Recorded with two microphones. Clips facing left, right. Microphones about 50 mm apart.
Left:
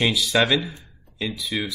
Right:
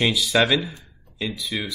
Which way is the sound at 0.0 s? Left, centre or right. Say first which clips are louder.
Right 1 dB; centre.